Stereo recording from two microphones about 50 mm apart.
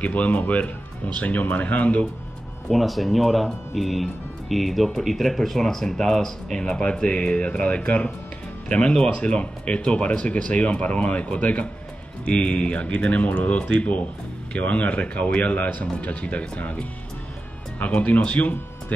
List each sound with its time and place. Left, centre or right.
0.0 s speech: left
2.7 s speech: centre; by 7.2 s left
7.2 s speech: left
17.7 s speech: left